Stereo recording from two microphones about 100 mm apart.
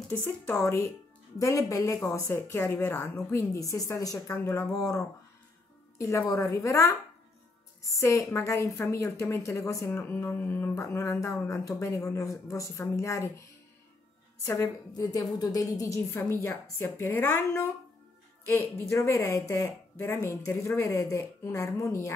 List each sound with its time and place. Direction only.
0.5 s a woman's voice: 30° left (ahead or behind)
9.8 s a woman's voice: 20° left (ahead or behind)
15.0 s a woman's voice: 40° left (ahead or behind)